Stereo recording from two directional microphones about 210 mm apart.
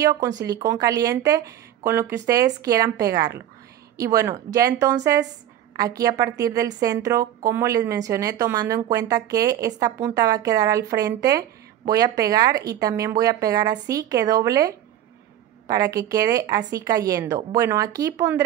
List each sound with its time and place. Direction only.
0.5 s a woman's voice: 15° right (ahead or behind)